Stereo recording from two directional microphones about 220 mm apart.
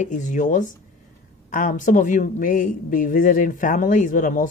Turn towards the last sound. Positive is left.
turn(degrees=35)  # may be behind; listen again after turning